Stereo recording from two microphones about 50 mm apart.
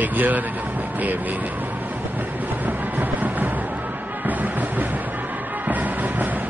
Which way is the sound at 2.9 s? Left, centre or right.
Right.